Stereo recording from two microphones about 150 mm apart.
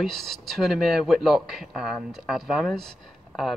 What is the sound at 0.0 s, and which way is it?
Speech, centre (ahead or behind).